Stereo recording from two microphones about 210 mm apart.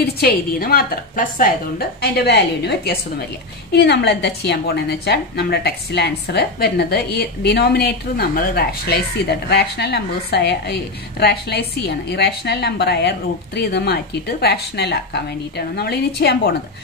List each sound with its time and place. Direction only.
0.0 s a woman's voice: 45° left (ahead or behind)